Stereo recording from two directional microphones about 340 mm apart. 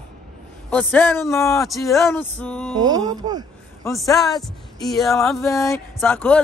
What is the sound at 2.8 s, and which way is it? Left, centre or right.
Speech, centre.